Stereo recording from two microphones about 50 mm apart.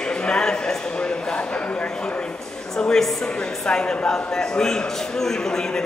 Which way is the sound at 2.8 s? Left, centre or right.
Centre.